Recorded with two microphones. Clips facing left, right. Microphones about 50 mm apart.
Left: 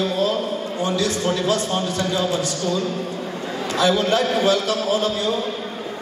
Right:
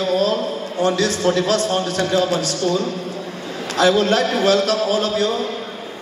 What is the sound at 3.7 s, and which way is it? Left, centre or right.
A man's voice, right.